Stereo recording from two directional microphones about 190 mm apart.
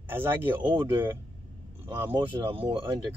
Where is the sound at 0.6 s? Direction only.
25° right (ahead or behind).